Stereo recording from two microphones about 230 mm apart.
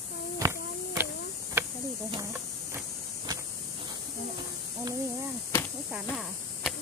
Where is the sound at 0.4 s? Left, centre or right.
Centre.